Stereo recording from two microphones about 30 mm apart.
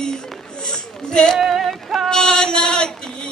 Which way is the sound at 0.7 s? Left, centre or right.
Left.